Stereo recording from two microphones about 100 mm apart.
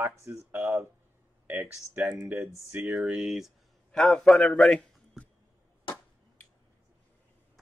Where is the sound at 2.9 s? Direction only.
5° right (ahead or behind).